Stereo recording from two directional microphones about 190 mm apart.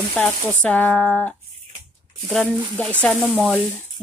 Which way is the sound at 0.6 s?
5° left (ahead or behind).